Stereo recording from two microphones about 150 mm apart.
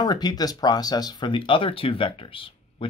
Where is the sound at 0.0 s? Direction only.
25° left (ahead or behind).